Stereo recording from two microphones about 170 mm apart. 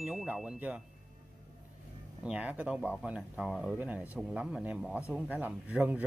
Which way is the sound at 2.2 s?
5° right (ahead or behind).